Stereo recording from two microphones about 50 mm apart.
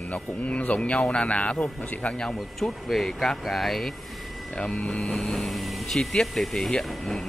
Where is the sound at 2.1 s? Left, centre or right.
Centre.